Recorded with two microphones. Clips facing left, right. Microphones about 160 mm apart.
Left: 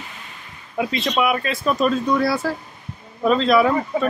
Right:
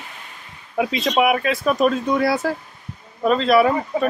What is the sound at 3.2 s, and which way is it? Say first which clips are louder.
Speech: even; centre (ahead or behind).